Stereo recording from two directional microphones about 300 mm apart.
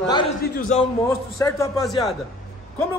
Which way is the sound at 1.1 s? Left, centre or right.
Centre.